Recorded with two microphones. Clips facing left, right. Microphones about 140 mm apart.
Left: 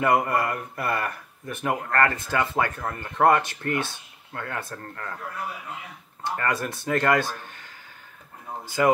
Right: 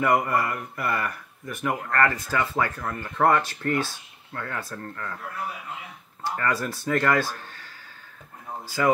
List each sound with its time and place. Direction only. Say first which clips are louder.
0.0 s speech: left 1 dB; 30° left (ahead or behind)
6.2 s speech: even; 20° left (ahead or behind)